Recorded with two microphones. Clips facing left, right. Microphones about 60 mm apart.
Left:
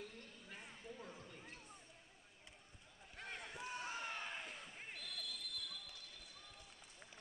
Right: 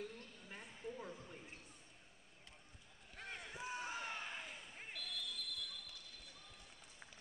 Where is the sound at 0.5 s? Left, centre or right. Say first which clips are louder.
Right 5 dB; centre.